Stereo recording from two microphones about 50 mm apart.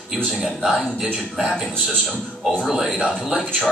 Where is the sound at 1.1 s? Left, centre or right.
Centre.